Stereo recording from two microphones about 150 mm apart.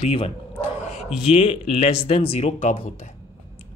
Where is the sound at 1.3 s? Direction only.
40° left (ahead or behind).